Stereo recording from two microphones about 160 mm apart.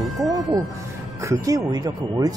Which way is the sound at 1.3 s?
20° right (ahead or behind).